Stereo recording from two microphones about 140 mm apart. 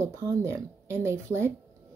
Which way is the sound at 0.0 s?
20° right (ahead or behind).